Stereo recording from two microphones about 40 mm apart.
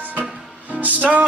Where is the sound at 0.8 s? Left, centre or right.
Right.